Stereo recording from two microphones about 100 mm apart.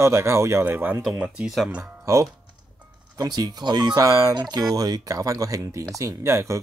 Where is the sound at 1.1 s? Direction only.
10° right (ahead or behind).